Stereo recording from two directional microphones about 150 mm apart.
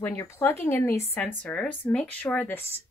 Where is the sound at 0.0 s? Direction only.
15° left (ahead or behind).